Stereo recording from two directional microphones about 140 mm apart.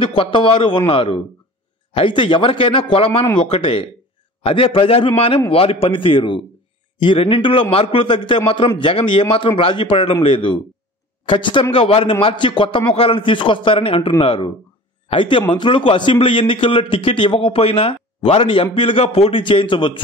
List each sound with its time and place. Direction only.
0.0 s a man's voice: 40° left (ahead or behind)